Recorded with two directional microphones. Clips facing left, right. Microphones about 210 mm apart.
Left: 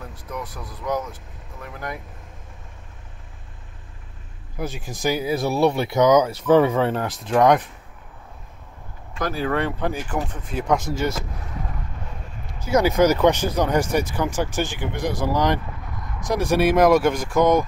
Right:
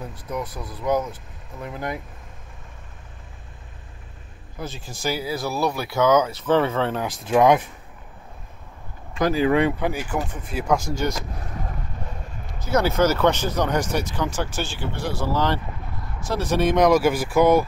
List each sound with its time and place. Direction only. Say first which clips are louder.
0.3 s speech: right 3 dB; 20° right (ahead or behind)
4.6 s speech: left 4 dB; 15° left (ahead or behind)
6.9 s speech: even; centre (ahead or behind)
9.4 s speech: right 3 dB; 10° right (ahead or behind)
11.0 s speech: left 1 dB; 5° left (ahead or behind)
12.5 s speech: left 2 dB; 10° left (ahead or behind); by 17.6 s 5° right (ahead or behind)